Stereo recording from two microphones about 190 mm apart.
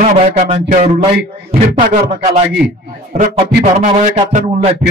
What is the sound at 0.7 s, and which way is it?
Speech, 35° right (ahead or behind).